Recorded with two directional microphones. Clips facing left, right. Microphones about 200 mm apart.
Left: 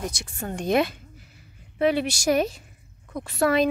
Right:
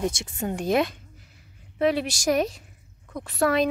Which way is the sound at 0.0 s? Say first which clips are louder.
Right 5 dB; 25° right (ahead or behind).